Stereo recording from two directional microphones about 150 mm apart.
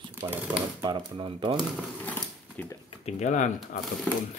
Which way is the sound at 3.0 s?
55° left (ahead or behind).